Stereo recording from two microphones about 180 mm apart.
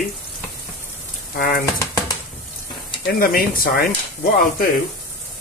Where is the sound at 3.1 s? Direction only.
55° left (ahead or behind).